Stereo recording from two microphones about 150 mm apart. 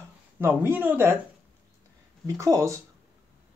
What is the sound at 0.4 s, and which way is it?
Speech, 15° right (ahead or behind).